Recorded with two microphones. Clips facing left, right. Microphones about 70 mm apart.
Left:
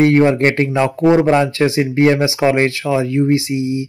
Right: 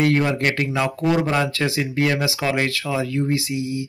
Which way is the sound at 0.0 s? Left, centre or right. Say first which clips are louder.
Left 7 dB; left.